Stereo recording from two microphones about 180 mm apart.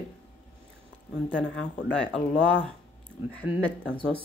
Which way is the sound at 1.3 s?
90° left.